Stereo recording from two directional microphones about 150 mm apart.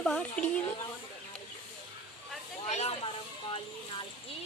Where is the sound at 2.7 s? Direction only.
45° left (ahead or behind).